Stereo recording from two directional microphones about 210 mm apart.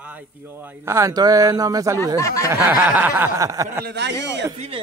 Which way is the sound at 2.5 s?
10° right (ahead or behind).